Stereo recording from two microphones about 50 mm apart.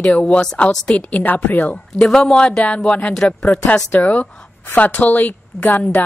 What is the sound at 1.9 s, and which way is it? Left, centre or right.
A woman's voice, centre.